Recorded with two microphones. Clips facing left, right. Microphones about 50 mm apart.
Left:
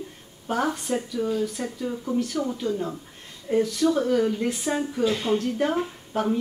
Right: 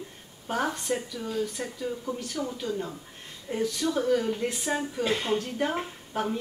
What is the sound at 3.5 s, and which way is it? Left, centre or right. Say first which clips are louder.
Speech: left 8 dB; left.